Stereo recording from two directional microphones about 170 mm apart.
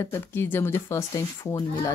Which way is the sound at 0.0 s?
15° left (ahead or behind).